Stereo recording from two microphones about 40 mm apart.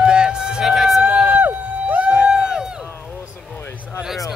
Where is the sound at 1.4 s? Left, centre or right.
Right.